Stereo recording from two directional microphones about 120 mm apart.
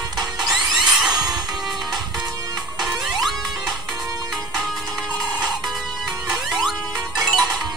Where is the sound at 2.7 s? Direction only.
Centre (ahead or behind).